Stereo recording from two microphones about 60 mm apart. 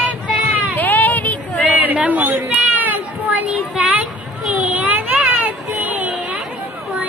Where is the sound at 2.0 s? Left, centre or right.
Right.